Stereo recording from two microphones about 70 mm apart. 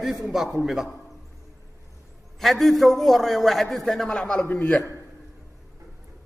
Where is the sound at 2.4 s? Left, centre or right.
Centre.